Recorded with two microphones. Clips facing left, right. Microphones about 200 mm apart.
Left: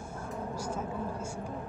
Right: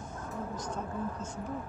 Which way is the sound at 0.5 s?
10° left (ahead or behind).